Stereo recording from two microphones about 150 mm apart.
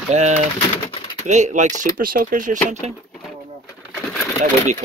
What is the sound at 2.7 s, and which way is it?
Speech, 50° right (ahead or behind).